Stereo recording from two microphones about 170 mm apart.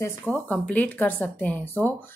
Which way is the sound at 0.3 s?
10° left (ahead or behind).